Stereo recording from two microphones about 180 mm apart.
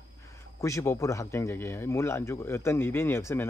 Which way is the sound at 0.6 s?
15° left (ahead or behind).